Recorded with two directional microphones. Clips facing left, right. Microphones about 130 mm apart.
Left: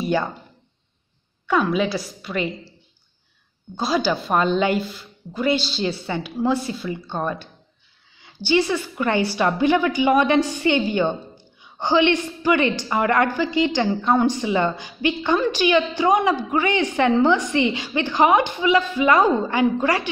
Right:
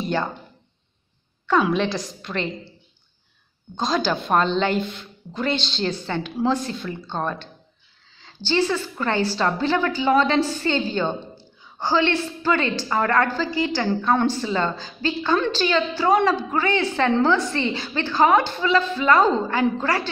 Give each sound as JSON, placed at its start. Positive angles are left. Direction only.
{"t": 0.0, "sound": "speech", "side_deg": 10}
{"t": 1.6, "sound": "a woman's voice", "side_deg": 5}
{"t": 3.7, "sound": "a woman's voice", "side_deg": 5}